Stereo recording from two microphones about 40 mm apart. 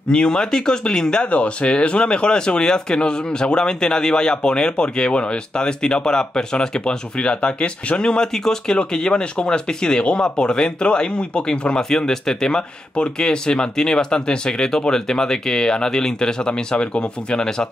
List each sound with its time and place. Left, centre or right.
0.1 s speech: left
1.3 s speech: left